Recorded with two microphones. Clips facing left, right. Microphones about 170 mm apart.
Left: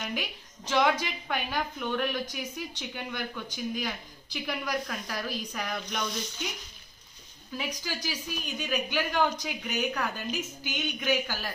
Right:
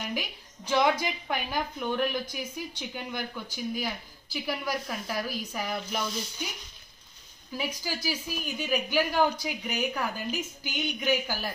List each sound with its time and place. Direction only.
0.7 s speech: 10° right (ahead or behind)
7.5 s speech: 10° right (ahead or behind)